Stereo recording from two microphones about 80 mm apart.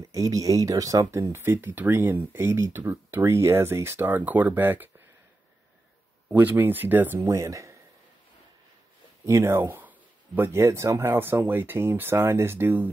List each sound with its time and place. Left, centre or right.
0.1 s speech: right
1.3 s speech: right
6.3 s speech: right
7.2 s speech: right
9.2 s speech: right